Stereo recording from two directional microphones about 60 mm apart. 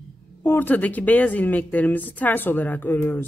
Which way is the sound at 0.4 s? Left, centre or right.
Left.